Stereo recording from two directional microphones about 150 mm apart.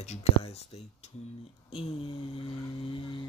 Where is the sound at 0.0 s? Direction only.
45° left (ahead or behind).